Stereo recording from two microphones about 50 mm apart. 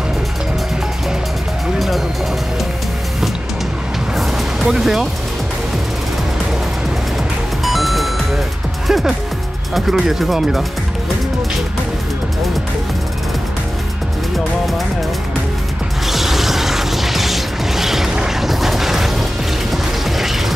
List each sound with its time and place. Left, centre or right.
1.8 s music: centre
4.6 s speech: centre
7.6 s music: centre
9.8 s speech: centre
16.1 s music: centre
19.7 s mechanisms: centre